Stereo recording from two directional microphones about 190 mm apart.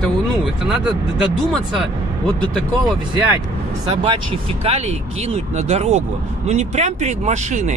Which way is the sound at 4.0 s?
30° right (ahead or behind).